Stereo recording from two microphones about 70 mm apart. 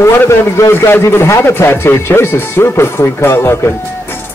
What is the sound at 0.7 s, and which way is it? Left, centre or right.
A man's voice, left.